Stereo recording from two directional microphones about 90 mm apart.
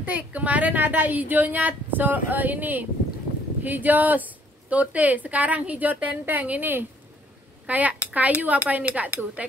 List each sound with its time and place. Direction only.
0.0 s a woman's voice: 15° right (ahead or behind)